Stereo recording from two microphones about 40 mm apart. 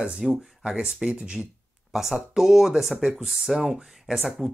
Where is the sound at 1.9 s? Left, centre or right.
Centre.